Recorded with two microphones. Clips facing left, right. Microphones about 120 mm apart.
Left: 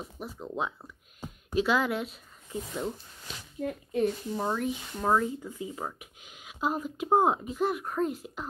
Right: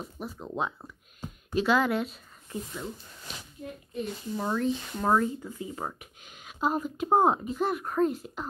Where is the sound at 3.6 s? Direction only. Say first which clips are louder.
Left 8 dB; 90° left.